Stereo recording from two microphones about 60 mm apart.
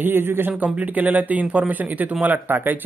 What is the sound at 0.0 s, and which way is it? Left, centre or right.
Speech, right.